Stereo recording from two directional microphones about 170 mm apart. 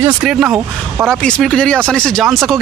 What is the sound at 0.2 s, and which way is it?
Speech, 5° right (ahead or behind).